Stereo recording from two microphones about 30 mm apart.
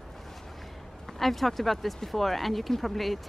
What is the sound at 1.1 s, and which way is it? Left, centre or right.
Speech, centre.